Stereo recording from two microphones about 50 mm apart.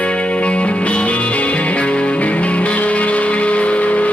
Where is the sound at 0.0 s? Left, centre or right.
Left.